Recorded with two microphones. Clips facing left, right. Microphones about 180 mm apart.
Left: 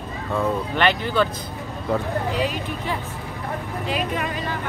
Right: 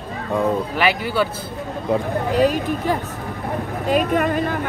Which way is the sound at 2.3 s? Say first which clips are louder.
Right 7 dB; 45° right (ahead or behind).